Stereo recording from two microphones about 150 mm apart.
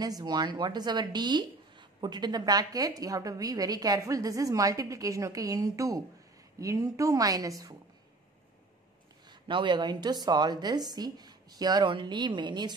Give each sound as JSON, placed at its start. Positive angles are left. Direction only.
{"t": 0.0, "sound": "a woman's voice", "side_deg": -25}
{"t": 9.3, "sound": "a woman's voice", "side_deg": -30}